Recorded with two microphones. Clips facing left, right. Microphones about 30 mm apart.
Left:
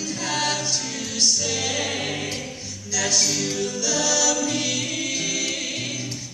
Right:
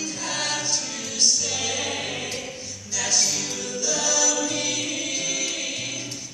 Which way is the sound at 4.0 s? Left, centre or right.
Left.